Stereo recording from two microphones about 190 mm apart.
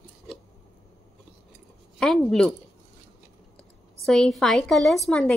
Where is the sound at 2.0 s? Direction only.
5° left (ahead or behind).